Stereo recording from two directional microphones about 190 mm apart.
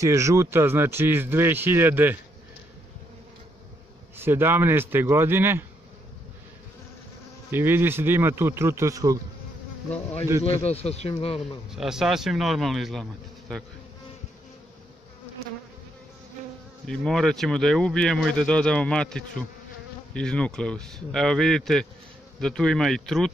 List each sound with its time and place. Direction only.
0.0 s speech: 15° right (ahead or behind)
4.2 s speech: 10° right (ahead or behind)
7.5 s speech: 10° right (ahead or behind)
10.4 s speech: 30° left (ahead or behind)
11.7 s speech: centre (ahead or behind)
16.8 s speech: 5° left (ahead or behind)